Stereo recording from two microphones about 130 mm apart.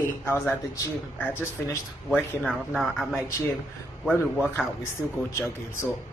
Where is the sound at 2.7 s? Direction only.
Centre (ahead or behind).